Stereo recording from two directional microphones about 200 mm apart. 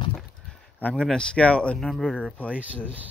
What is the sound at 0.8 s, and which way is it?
Speech, 5° left (ahead or behind).